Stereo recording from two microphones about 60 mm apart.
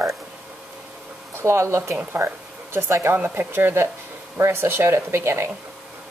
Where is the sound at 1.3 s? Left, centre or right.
Right.